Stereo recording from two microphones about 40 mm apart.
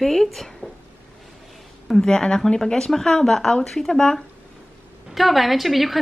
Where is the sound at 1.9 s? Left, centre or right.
Centre.